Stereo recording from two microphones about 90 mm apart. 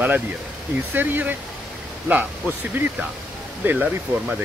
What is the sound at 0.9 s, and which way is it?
Speech, 20° right (ahead or behind).